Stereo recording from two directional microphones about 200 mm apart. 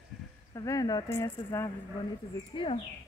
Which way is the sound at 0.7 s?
20° left (ahead or behind).